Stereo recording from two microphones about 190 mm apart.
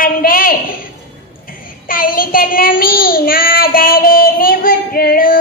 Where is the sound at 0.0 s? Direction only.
50° left (ahead or behind).